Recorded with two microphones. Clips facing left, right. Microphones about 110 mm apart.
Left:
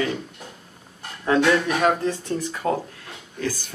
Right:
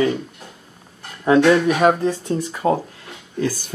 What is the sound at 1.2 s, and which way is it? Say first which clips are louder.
Speech: right 5 dB; 20° right (ahead or behind).